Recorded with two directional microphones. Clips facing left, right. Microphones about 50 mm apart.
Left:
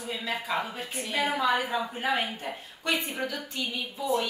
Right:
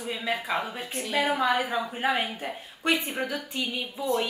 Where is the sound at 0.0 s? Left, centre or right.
Centre.